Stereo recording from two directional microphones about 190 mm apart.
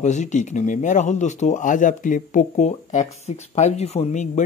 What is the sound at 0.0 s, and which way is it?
Speech, 40° left (ahead or behind).